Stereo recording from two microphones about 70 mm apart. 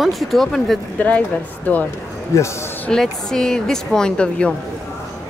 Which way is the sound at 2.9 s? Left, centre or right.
Centre.